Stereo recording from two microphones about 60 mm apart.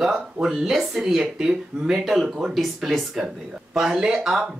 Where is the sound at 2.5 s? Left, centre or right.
Centre.